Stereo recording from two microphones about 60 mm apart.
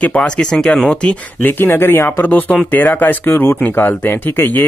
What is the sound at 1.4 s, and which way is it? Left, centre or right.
Speech, left.